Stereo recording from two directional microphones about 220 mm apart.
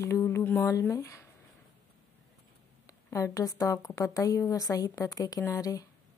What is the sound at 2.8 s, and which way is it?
Speech, 15° left (ahead or behind).